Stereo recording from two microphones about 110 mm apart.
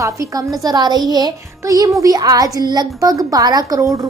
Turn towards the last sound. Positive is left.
turn(degrees=-30)  # may be behind; listen again after turning